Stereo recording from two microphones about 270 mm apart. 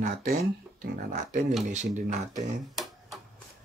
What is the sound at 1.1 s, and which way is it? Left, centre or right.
Speech, right.